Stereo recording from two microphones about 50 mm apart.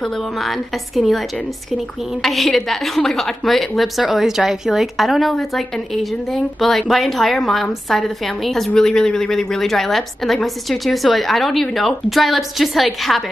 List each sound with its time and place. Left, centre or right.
0.0 s a woman's voice: centre
2.2 s a woman's voice: centre